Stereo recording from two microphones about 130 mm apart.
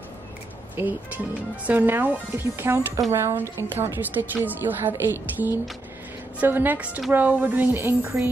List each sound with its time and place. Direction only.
0.7 s a woman's voice: 15° right (ahead or behind)